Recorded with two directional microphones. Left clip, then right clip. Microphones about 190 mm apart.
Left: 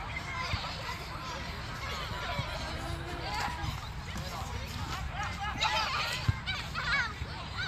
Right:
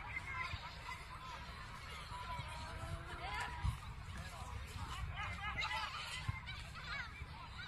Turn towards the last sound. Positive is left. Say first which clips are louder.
# left 15 dB
turn(degrees=45)  # may be behind; listen again after turning